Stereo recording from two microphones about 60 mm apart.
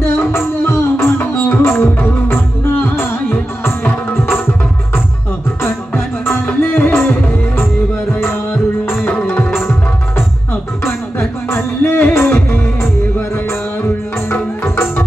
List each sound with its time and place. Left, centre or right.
0.0 s music: left
6.3 s music: left
9.6 s music: left
12.3 s music: left
14.3 s music: left